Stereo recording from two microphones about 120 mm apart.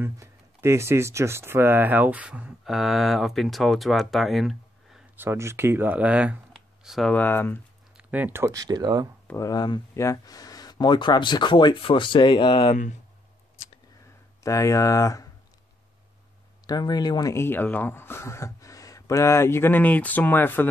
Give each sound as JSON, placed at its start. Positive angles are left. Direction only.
{"t": 0.0, "sound": "speech", "side_deg": -20}
{"t": 5.1, "sound": "speech", "side_deg": -20}
{"t": 6.5, "sound": "computer keyboard", "side_deg": 0}
{"t": 7.2, "sound": "speech", "side_deg": 15}
{"t": 8.0, "sound": "speech", "side_deg": -10}
{"t": 9.4, "sound": "speech", "side_deg": 35}
{"t": 14.4, "sound": "speech", "side_deg": 25}
{"t": 16.6, "sound": "speech", "side_deg": 35}
{"t": 17.4, "sound": "speech", "side_deg": 15}